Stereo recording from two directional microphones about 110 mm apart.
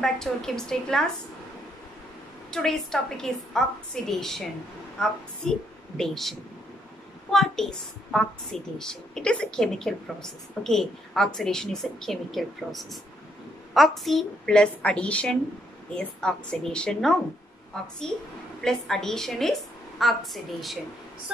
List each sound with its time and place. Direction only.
0.0 s a woman's voice: 5° left (ahead or behind)
2.5 s a woman's voice: 5° left (ahead or behind)
7.3 s a woman's voice: 5° left (ahead or behind)